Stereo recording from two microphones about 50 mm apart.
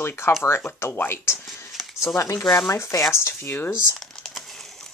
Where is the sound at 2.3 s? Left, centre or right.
Left.